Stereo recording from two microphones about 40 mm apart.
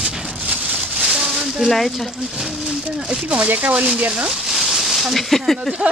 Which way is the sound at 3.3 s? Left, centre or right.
Right.